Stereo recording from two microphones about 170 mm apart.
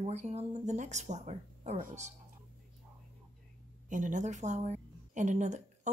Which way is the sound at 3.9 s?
45° right (ahead or behind).